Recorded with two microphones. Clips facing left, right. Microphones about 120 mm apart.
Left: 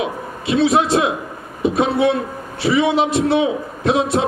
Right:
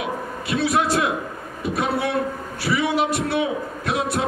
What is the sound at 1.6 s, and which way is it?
A man's voice, 20° left (ahead or behind).